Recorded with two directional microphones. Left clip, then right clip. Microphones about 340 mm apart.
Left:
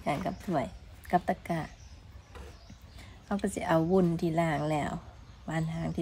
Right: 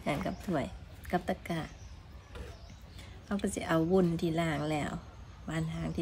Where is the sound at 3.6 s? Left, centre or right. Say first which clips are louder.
Left 2 dB; centre.